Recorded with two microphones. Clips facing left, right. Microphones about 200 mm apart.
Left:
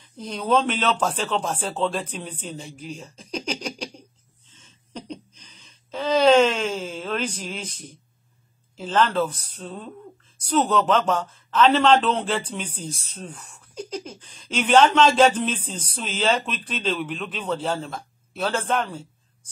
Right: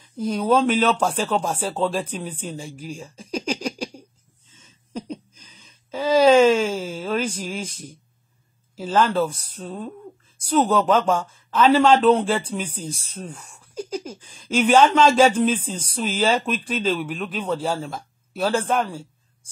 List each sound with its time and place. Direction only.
0.2 s speech: 5° right (ahead or behind)
2.9 s a sound: 5° right (ahead or behind)
8.7 s speech: 10° right (ahead or behind)